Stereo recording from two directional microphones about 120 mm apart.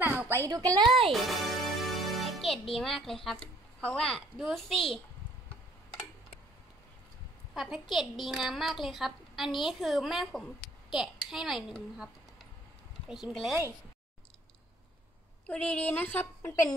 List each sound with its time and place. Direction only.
0.0 s a sound: 15° right (ahead or behind)
0.4 s a woman's voice: 30° right (ahead or behind)
1.1 s music: centre (ahead or behind)
2.7 s a child's voice: centre (ahead or behind)
7.5 s a woman's voice: centre (ahead or behind)
13.1 s a child's voice: centre (ahead or behind)
15.4 s a woman's voice: 10° left (ahead or behind)